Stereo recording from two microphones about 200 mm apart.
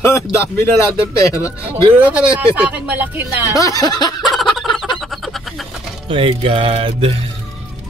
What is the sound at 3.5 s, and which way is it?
Speech, 15° left (ahead or behind).